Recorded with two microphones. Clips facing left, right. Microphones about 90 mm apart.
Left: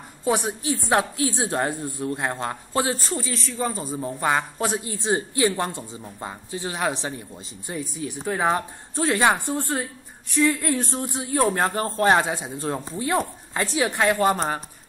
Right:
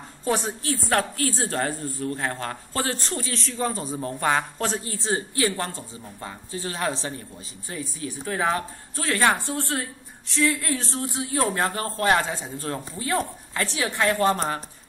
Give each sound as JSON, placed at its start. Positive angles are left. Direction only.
{"t": 0.2, "sound": "a man's voice", "side_deg": 15}
{"t": 3.0, "sound": "a man's voice", "side_deg": 5}